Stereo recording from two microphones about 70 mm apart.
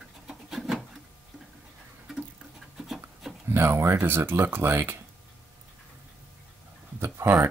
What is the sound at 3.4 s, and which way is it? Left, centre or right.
Speech, right.